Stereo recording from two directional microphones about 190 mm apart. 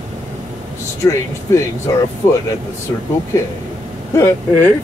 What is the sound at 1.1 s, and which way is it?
Speech, 15° left (ahead or behind).